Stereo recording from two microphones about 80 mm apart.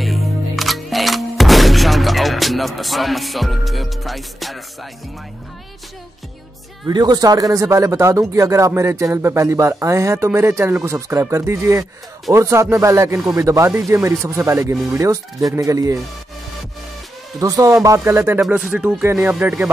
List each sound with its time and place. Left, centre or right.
0.0 s music: centre
6.9 s speech: right
17.4 s a man's voice: right
18.7 s speech: centre